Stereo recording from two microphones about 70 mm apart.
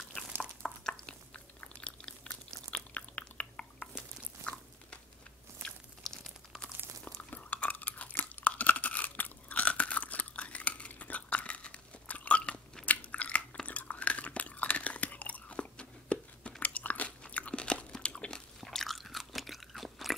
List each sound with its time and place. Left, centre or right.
0.4 s a sound: centre
2.9 s chewing: left
7.2 s crunch: left
17.2 s biting: centre
18.6 s crunch: centre